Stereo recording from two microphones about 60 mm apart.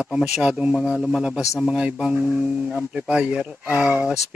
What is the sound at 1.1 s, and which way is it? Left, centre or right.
Speech, centre.